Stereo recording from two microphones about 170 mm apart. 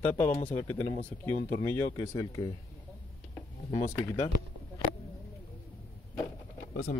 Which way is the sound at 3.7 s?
20° left (ahead or behind).